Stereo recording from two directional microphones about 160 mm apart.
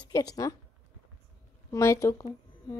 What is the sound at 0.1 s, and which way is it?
Child singing, 25° left (ahead or behind).